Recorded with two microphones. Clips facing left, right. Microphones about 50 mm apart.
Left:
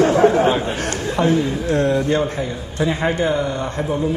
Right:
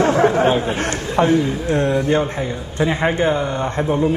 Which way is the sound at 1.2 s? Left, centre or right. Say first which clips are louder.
Right 2 dB; right.